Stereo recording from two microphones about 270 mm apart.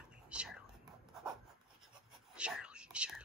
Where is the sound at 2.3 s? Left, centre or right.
Centre.